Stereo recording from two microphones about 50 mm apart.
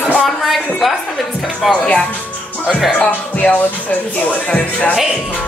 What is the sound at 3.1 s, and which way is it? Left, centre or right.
Speech, left.